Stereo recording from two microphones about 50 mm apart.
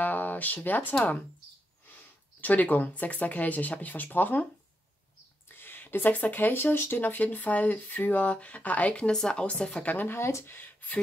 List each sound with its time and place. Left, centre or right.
0.0 s a sound: left
0.7 s speech: left
5.5 s speech: left; by 9.8 s centre
9.8 s speech: left
10.1 s speech: left